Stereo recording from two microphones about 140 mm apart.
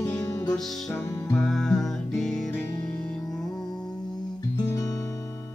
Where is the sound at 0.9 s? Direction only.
25° left (ahead or behind).